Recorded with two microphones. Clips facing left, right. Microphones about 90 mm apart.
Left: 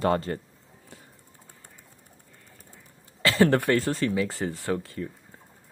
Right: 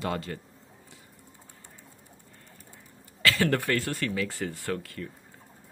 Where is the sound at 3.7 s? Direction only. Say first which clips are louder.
Left 5 dB; 25° left (ahead or behind).